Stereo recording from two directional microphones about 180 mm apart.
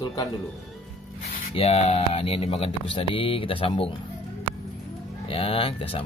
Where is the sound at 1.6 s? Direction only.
35° left (ahead or behind).